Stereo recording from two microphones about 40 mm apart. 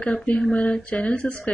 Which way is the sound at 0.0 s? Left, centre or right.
Left.